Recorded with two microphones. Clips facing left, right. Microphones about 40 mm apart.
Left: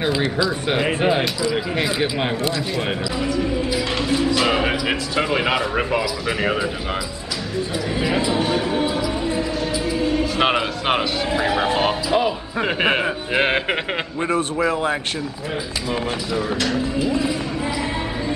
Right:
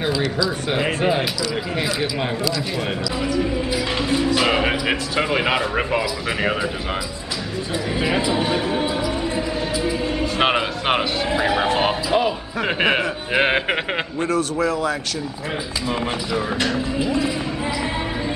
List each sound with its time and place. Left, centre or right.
0.7 s speech: centre
3.3 s speech: centre
8.2 s speech: centre
14.2 s a man's voice: left
16.3 s speech: centre